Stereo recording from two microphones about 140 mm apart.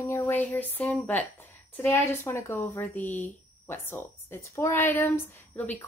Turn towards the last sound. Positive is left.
turn(degrees=15)  # may be behind; listen again after turning